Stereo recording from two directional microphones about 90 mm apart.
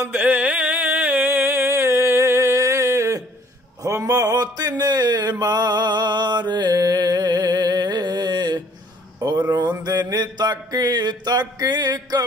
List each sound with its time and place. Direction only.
0.0 s music: 15° right (ahead or behind); by 3.3 s 35° right (ahead or behind)
3.8 s a sound: 40° right (ahead or behind)
9.5 s mantra: 45° right (ahead or behind)